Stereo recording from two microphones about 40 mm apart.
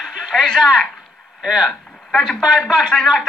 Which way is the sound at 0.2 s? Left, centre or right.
Centre.